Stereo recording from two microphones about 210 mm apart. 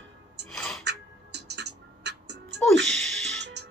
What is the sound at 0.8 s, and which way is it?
Music, 55° right (ahead or behind).